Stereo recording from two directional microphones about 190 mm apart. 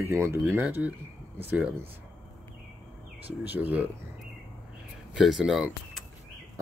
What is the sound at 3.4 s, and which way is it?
Speech, 10° right (ahead or behind).